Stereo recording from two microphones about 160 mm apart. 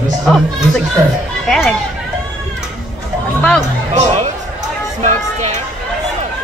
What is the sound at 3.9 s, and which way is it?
Speech, 50° right (ahead or behind).